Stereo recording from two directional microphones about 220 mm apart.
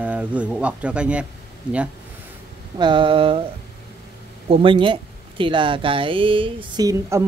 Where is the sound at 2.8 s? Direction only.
20° right (ahead or behind).